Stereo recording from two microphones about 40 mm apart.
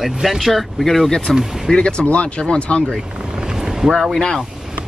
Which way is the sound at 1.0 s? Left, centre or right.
Centre.